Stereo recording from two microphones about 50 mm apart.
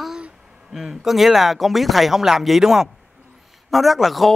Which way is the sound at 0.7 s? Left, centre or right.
Centre.